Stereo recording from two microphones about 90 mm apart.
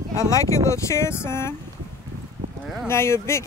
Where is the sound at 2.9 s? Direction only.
30° left (ahead or behind).